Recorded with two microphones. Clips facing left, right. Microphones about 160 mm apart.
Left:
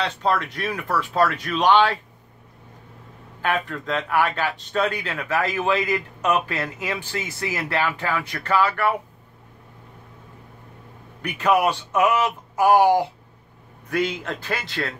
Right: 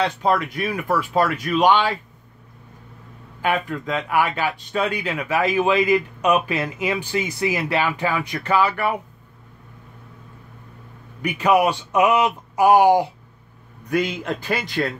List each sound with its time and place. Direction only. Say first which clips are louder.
0.0 s speech: right 3 dB; 10° right (ahead or behind)
3.4 s speech: right 2 dB; 10° right (ahead or behind)
11.2 s speech: right 2 dB; 15° right (ahead or behind)